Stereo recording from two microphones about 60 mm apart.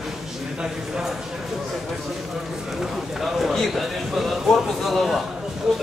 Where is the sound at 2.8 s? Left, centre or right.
Centre.